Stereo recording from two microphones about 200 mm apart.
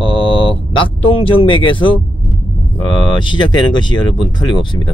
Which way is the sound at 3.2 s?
20° left (ahead or behind).